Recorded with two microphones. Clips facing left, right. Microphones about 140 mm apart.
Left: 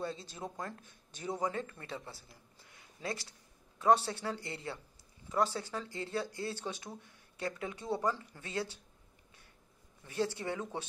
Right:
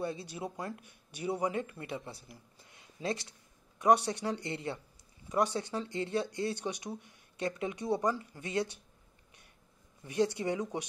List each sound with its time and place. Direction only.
0.0 s a man's voice: 15° right (ahead or behind)
10.0 s a man's voice: 15° right (ahead or behind)